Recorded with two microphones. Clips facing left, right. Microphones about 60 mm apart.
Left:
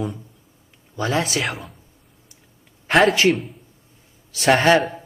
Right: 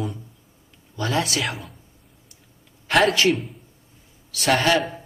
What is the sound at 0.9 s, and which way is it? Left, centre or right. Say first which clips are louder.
Speech: left 2 dB; left.